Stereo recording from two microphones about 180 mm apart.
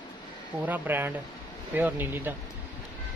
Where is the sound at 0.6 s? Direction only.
10° right (ahead or behind).